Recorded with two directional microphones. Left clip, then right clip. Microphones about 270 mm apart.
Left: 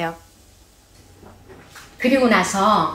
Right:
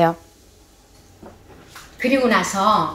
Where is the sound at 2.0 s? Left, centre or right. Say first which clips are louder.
Left 1 dB; right.